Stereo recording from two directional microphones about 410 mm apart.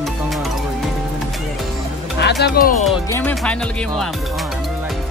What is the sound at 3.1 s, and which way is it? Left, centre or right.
Speech, centre.